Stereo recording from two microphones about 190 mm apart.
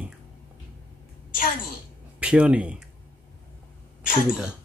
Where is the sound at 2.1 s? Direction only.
5° right (ahead or behind).